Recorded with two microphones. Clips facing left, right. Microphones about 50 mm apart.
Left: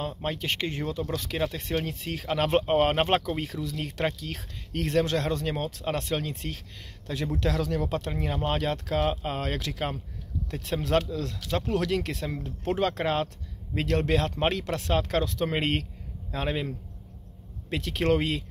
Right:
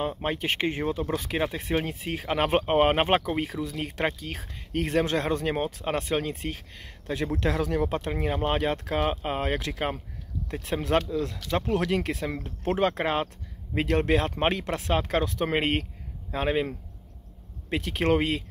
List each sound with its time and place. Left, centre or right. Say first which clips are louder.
0.0 s speech: right 3 dB; right
17.6 s speech: right 1 dB; centre